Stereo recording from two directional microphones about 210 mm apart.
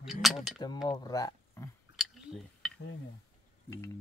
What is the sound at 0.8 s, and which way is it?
Speech, 20° left (ahead or behind).